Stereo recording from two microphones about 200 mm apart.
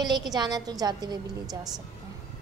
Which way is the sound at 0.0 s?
20° right (ahead or behind).